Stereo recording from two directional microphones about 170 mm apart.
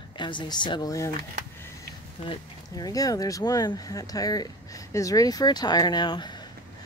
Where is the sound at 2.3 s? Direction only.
20° left (ahead or behind).